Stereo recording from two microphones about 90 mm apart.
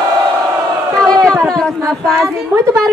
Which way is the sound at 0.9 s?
40° right (ahead or behind).